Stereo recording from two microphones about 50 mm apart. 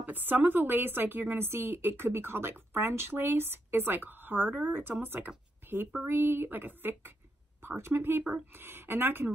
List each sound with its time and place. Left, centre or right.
0.0 s a woman's voice: right
7.6 s a woman's voice: right